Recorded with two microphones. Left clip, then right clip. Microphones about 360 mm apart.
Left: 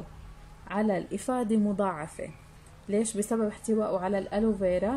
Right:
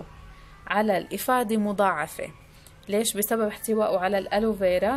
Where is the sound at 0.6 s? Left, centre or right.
Right.